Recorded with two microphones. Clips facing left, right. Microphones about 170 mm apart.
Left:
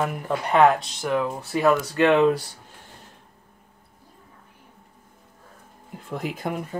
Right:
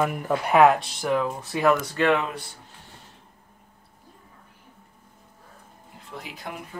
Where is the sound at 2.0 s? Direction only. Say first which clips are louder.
Left 4 dB; 25° left (ahead or behind).